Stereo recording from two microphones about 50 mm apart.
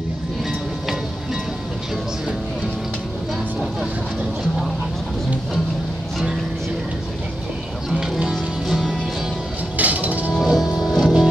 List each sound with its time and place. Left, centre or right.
8.0 s music: centre
9.8 s music: right
10.4 s music: centre